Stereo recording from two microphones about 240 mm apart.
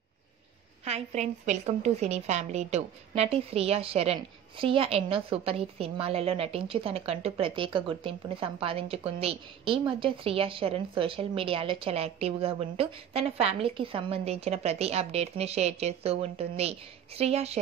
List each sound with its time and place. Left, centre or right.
0.8 s a woman's voice: right